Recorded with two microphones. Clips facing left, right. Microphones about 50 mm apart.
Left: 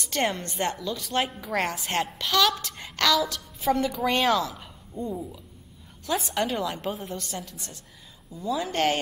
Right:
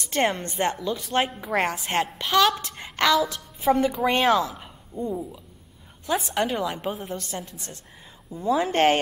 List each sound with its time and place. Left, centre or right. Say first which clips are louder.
0.1 s a woman's voice: right 3 dB; centre
2.8 s a woman's voice: right 3 dB; right
4.2 s a woman's voice: right 3 dB; centre
6.0 s a woman's voice: right 2 dB; centre
6.9 s a woman's voice: right 2 dB; centre
8.3 s speech: right 5 dB; right